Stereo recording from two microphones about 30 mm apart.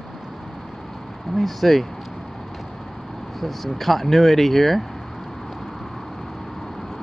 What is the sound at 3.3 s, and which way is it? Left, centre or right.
Speech, centre.